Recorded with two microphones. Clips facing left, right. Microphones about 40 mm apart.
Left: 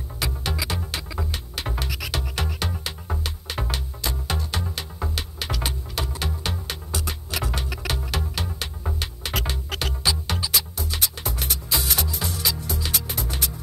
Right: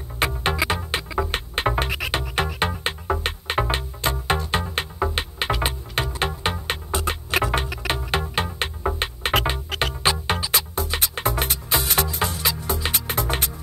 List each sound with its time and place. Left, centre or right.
0.2 s music: right